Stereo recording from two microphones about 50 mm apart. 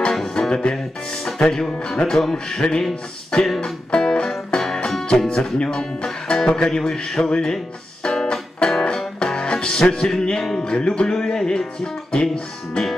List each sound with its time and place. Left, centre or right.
0.1 s music: centre
1.5 s speech: centre
2.3 s speech: centre
3.4 s speech: centre
8.0 s music: centre
10.6 s speech: centre